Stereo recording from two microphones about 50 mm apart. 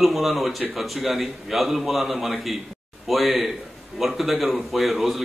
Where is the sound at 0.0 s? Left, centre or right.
Centre.